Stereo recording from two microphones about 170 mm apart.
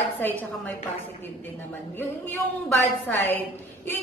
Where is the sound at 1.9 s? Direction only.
10° left (ahead or behind).